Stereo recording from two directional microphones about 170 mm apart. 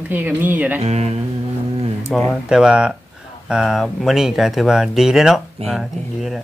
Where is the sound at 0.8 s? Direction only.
40° right (ahead or behind).